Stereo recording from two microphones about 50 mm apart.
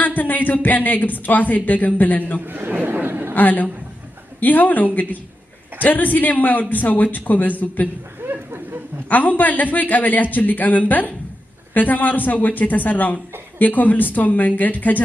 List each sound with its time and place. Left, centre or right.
0.0 s a woman's voice: left
2.4 s speech: right
3.3 s a woman's voice: left
8.3 s a sound: right
9.1 s a woman's voice: left